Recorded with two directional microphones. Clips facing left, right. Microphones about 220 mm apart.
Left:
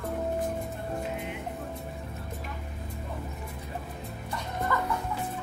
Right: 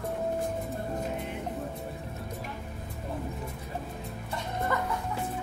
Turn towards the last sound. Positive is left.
turn(degrees=-20)  # may be behind; listen again after turning